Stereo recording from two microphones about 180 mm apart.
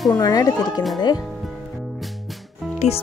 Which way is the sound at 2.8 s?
40° left (ahead or behind).